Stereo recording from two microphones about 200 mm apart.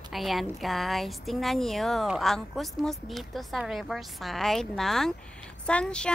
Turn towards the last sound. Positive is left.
turn(degrees=5)  # may be behind; listen again after turning